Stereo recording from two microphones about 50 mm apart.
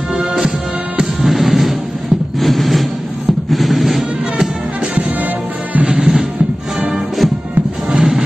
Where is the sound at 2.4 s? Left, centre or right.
Centre.